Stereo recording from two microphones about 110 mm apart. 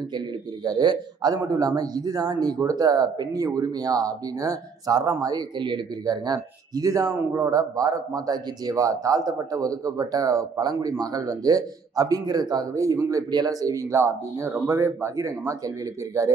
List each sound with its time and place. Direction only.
0.7 s a man's voice: 40° right (ahead or behind)